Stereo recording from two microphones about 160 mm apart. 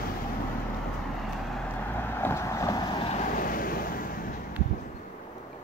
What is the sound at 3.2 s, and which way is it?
Vehicle, 60° left (ahead or behind).